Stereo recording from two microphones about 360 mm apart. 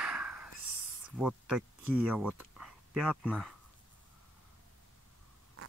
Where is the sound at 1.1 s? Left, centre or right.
Centre.